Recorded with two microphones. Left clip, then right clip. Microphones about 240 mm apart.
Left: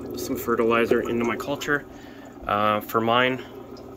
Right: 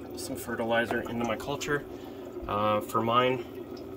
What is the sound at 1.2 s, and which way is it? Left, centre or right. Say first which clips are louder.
Speech: left 5 dB; centre.